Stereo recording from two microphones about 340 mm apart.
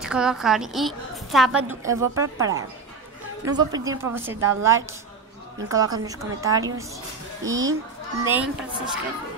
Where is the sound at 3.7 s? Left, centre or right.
Centre.